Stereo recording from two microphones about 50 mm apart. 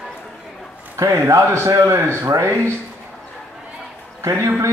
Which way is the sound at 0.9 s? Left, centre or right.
Right.